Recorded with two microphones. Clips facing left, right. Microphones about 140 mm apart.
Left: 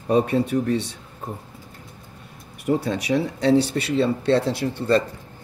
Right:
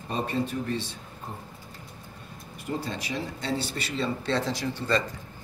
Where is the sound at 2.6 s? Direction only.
70° left (ahead or behind).